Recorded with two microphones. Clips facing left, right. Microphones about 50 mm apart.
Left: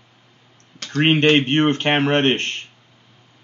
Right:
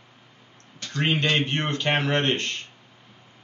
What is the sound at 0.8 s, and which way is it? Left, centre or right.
Speech, left.